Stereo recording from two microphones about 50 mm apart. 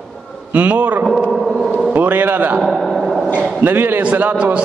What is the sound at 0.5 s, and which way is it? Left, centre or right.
A man's voice, right.